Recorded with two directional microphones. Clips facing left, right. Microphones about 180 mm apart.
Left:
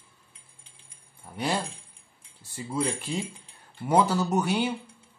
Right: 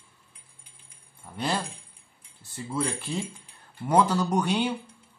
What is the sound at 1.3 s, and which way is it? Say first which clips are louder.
Speech: even; 10° left (ahead or behind).